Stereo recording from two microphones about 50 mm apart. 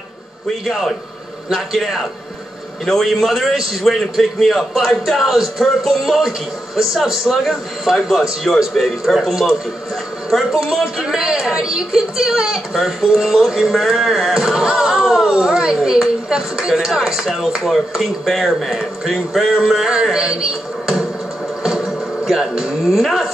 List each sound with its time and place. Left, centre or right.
0.7 s a man's voice: centre